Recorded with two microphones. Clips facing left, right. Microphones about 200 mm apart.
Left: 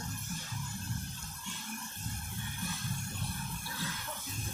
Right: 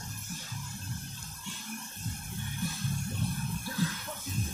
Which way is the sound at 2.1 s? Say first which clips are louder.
Right 3 dB; 15° right (ahead or behind).